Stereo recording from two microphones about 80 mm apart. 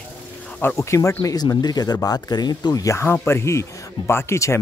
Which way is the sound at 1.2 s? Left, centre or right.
Left.